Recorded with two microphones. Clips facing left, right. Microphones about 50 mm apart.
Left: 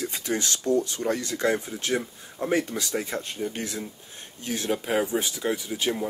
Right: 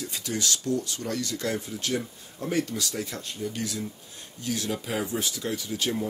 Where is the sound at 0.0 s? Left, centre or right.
Left.